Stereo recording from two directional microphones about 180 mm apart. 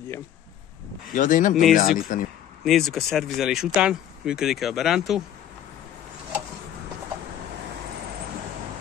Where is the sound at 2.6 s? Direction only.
Centre (ahead or behind).